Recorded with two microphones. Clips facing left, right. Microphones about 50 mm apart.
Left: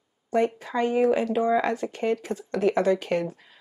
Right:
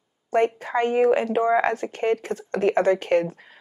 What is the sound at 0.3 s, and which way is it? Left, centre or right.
Speech, right.